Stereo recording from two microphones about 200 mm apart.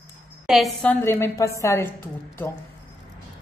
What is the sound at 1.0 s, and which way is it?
Speech, 10° left (ahead or behind).